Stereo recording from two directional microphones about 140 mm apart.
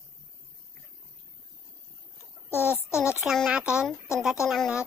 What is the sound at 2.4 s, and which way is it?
Speech, 15° left (ahead or behind).